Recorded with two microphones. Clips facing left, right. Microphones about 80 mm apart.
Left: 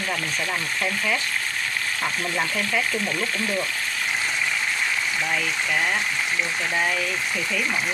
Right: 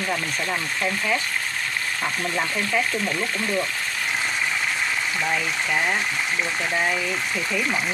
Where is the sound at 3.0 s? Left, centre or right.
Right.